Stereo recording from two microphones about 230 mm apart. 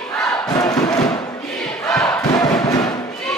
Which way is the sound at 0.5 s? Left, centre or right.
Centre.